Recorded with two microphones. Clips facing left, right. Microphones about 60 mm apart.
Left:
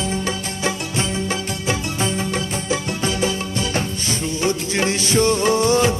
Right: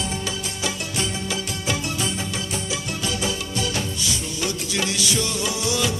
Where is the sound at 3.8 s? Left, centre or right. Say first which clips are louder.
Left 4 dB; left.